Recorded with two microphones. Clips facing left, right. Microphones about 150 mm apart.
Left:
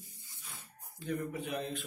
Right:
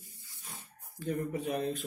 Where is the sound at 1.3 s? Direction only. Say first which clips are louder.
Right 5 dB; 40° right (ahead or behind).